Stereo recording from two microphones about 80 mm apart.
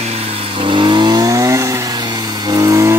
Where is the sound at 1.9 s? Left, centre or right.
Right.